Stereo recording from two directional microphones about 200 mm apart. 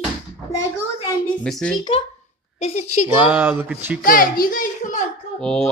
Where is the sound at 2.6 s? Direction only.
35° left (ahead or behind).